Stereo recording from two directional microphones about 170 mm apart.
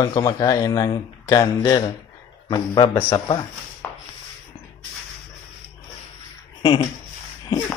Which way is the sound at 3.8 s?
10° left (ahead or behind).